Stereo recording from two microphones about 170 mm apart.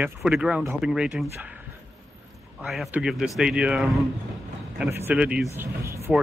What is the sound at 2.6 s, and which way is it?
Speech, 5° right (ahead or behind).